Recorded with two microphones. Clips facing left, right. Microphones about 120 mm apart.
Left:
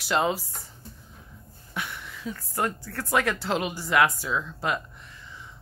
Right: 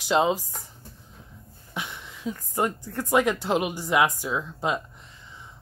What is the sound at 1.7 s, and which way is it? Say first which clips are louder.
Speech: even; 20° right (ahead or behind).